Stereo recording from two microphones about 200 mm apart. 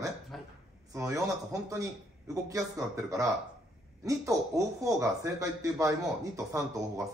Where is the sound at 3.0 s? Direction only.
15° right (ahead or behind).